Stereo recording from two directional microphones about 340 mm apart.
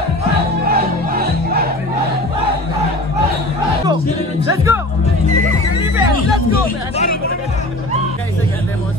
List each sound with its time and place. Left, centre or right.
0.7 s music: right
4.7 s speech: centre